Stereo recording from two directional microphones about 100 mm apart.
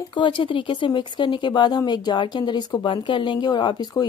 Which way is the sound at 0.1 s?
55° left (ahead or behind).